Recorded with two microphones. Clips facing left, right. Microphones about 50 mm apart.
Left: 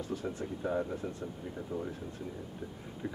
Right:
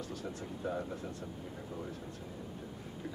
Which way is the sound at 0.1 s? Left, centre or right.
Left.